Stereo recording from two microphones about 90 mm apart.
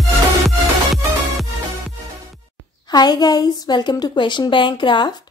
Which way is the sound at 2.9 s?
50° left (ahead or behind).